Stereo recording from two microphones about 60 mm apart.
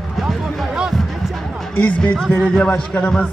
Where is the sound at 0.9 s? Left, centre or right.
Centre.